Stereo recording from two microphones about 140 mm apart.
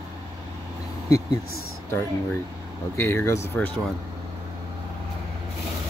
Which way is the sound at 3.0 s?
20° left (ahead or behind).